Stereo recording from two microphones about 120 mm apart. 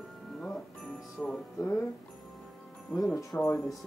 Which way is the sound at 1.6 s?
20° left (ahead or behind).